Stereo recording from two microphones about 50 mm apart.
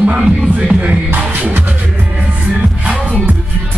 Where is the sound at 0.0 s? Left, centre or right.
Right.